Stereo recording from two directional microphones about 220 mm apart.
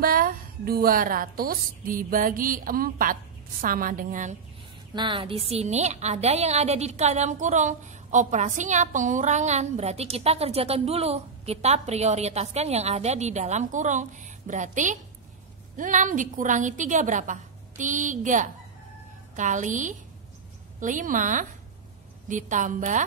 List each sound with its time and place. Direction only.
0.0 s a woman's voice: 40° right (ahead or behind)
4.9 s a woman's voice: 20° right (ahead or behind)